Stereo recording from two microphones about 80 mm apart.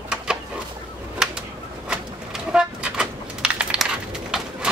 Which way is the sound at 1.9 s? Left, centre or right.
Centre.